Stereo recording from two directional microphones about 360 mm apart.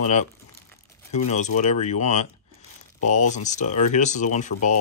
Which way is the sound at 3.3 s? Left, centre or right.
Centre.